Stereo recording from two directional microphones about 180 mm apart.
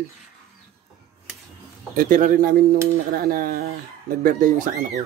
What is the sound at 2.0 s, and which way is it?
Speech, 50° right (ahead or behind).